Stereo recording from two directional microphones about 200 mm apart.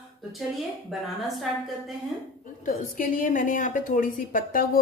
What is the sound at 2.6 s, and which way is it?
A woman's voice, 40° left (ahead or behind).